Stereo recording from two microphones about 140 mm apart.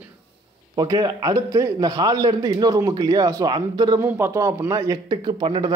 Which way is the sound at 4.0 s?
20° right (ahead or behind).